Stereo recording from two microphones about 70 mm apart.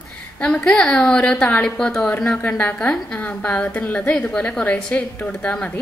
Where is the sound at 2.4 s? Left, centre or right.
Left.